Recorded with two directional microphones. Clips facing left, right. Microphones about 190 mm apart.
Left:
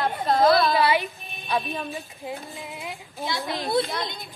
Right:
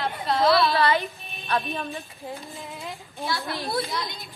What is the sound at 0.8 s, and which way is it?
A woman's voice, 10° left (ahead or behind).